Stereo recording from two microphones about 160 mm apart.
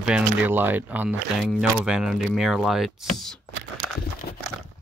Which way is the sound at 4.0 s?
70° left (ahead or behind).